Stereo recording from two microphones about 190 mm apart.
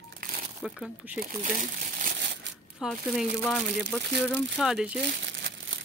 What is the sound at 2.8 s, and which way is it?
Speech, centre (ahead or behind).